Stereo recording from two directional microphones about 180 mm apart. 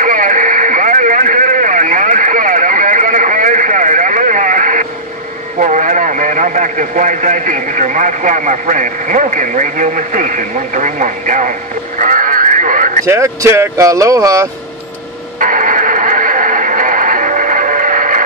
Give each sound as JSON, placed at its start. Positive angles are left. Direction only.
{"t": 0.0, "sound": "radio", "side_deg": -45}
{"t": 5.6, "sound": "speech", "side_deg": -45}
{"t": 12.0, "sound": "radio", "side_deg": -45}
{"t": 13.0, "sound": "speech", "side_deg": -15}
{"t": 15.3, "sound": "radio", "side_deg": -50}